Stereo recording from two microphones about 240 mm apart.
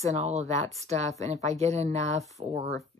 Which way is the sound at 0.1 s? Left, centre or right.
Right.